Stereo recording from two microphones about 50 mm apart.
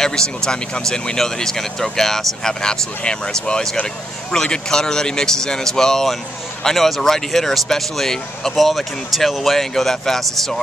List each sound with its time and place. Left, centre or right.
0.5 s speech: centre